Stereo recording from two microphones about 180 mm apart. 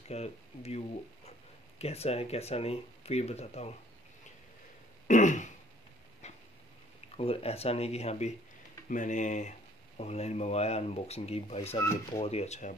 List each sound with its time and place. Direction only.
0.1 s speech: 35° left (ahead or behind)
5.0 s throat clearing: 45° left (ahead or behind)
6.2 s a sound: 40° left (ahead or behind)
7.2 s speech: 35° left (ahead or behind)